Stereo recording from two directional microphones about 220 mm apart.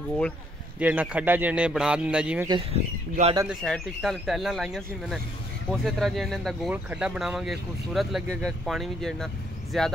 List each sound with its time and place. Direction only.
0.7 s speech: 5° right (ahead or behind)
2.4 s speech: 25° right (ahead or behind)
3.4 s speech: centre (ahead or behind)